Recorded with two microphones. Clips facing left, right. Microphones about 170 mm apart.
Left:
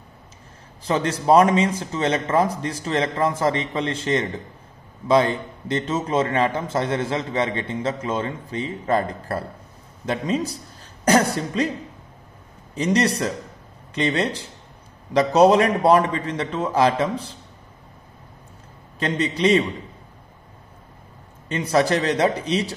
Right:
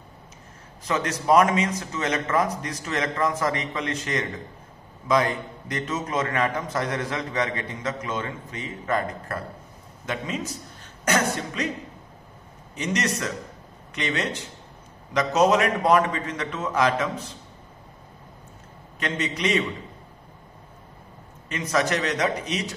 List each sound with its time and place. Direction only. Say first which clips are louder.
0.8 s a man's voice: left 4 dB; 30° left (ahead or behind)
12.7 s a man's voice: left 6 dB; 35° left (ahead or behind)
18.9 s a man's voice: left 5 dB; 30° left (ahead or behind)
21.5 s a man's voice: left 5 dB; 30° left (ahead or behind)